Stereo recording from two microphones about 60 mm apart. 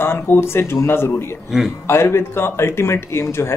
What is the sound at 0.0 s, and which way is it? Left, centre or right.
Speech, left.